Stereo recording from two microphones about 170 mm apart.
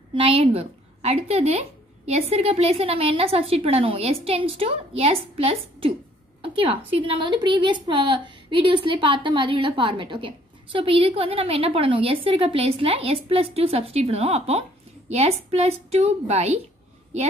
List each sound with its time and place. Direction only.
0.1 s a woman's voice: 35° right (ahead or behind)
6.4 s a sound: 30° right (ahead or behind)
7.1 s a woman's voice: 30° right (ahead or behind)